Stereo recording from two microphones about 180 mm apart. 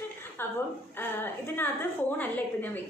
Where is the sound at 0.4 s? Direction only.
10° left (ahead or behind).